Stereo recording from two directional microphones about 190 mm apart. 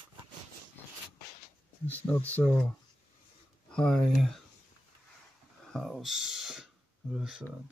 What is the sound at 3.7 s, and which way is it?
Speech, 5° left (ahead or behind).